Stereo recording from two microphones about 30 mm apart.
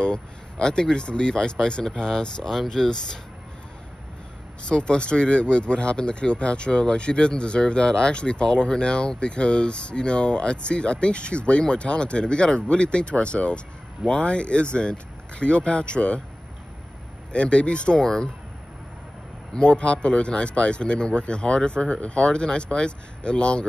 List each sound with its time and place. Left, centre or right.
0.0 s speech: left
2.8 s speech: centre
4.6 s speech: left
17.3 s speech: left
18.0 s speech: left
19.5 s speech: left